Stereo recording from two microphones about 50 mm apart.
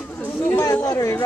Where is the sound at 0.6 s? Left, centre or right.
Left.